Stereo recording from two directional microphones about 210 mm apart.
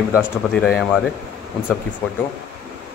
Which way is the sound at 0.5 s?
Centre (ahead or behind).